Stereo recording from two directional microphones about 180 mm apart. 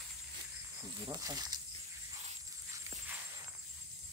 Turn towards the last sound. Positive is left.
turn(degrees=-15)  # may be behind; listen again after turning